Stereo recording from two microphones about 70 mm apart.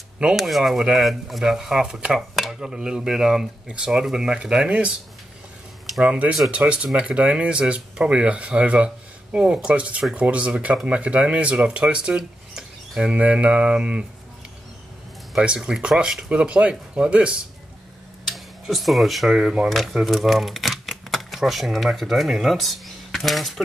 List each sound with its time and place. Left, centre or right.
0.4 s speech: centre
2.3 s dishes: centre
2.7 s speech: centre
5.9 s speech: centre
15.4 s speech: centre
18.2 s speech: centre